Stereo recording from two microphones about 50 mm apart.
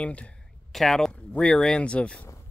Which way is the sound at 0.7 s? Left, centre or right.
Centre.